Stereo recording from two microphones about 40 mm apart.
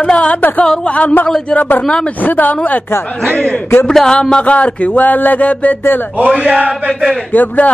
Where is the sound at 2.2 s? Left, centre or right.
Left.